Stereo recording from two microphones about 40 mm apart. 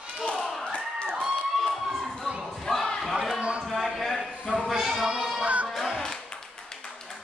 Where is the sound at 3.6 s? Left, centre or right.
Centre.